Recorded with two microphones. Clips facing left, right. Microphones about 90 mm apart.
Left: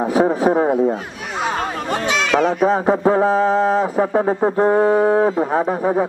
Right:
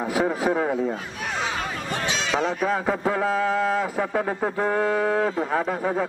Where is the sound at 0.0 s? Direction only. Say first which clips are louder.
Left 7 dB; 30° left (ahead or behind).